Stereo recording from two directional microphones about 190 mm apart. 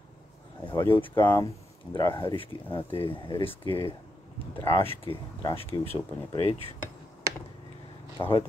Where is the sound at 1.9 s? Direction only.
25° left (ahead or behind).